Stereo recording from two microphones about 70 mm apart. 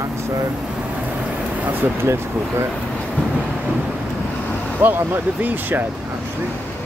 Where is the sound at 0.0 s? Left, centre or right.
Right.